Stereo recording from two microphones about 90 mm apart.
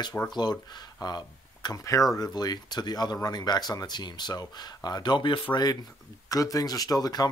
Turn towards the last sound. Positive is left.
turn(degrees=45)  # may be behind; listen again after turning